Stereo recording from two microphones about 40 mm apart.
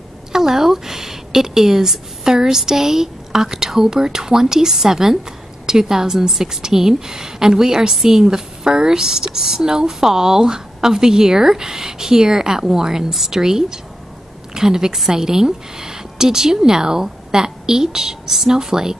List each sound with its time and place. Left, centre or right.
0.3 s a woman's voice: centre